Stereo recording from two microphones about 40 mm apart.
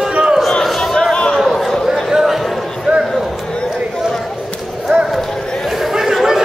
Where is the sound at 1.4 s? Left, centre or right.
Centre.